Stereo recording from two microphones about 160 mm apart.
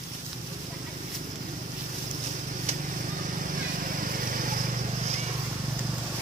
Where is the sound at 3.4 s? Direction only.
60° right (ahead or behind).